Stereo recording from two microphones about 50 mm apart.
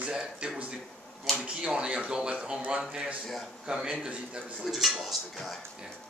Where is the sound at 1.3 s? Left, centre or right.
Right.